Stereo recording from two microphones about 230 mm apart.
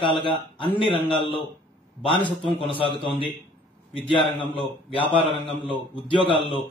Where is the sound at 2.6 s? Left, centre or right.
Left.